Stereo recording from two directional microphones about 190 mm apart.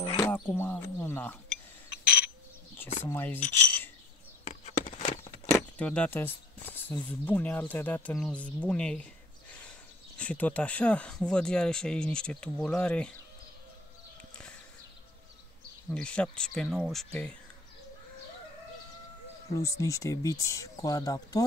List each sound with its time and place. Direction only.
0.2 s a sound: 15° left (ahead or behind)
0.9 s speech: 10° left (ahead or behind)
3.0 s speech: 10° left (ahead or behind)
4.5 s a sound: 40° left (ahead or behind)
5.5 s speech: 5° left (ahead or behind)
15.9 s speech: 5° left (ahead or behind)
19.5 s speech: 15° left (ahead or behind)